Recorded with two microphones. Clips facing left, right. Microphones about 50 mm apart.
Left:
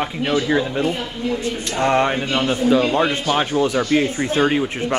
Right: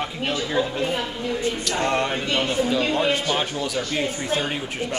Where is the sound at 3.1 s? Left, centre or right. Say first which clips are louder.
Left 4 dB; left.